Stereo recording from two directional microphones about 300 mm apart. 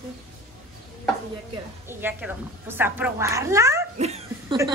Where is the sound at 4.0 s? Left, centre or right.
Right.